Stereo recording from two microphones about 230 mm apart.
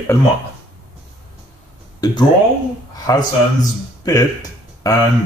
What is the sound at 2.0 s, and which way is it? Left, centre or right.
Speech, centre.